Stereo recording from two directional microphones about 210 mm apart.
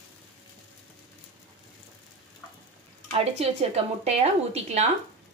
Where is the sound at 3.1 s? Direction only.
30° right (ahead or behind).